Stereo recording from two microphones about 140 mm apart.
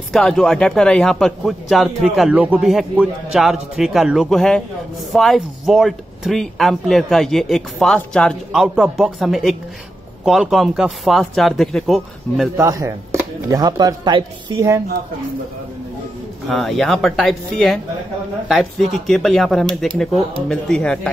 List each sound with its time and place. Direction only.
0.1 s speech: 5° left (ahead or behind)
8.5 s speech: 5° right (ahead or behind)
12.5 s speech: 25° right (ahead or behind)
16.4 s speech: centre (ahead or behind)